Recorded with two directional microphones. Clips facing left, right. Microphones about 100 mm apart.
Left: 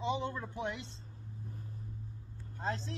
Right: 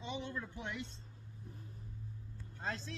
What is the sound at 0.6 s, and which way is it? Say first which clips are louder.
Speech: left 5 dB; 20° left (ahead or behind).